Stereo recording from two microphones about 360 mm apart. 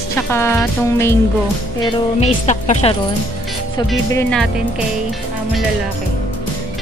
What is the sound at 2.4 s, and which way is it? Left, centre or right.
Speech, centre.